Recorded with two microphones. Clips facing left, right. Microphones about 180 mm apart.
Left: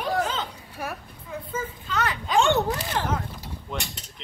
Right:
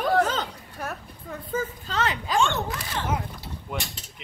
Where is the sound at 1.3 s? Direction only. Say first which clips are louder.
Right 2 dB; 40° right (ahead or behind).